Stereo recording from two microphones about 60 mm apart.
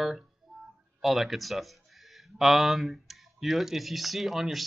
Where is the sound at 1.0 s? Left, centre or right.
Centre.